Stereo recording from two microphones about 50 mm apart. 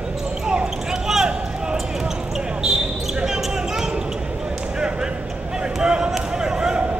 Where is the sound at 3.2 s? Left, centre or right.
Centre.